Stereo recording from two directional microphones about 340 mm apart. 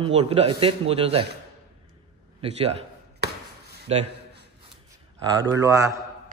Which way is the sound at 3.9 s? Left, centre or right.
Centre.